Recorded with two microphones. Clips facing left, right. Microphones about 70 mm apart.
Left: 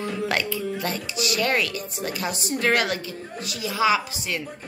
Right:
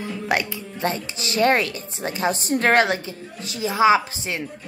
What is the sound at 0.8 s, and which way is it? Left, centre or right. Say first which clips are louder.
A woman's voice: right 2 dB; right.